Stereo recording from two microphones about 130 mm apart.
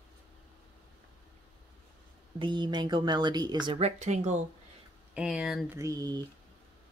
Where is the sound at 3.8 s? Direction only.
60° right (ahead or behind).